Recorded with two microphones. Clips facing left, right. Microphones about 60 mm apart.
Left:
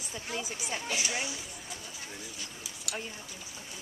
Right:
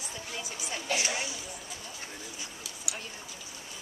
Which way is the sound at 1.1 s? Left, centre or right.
Centre.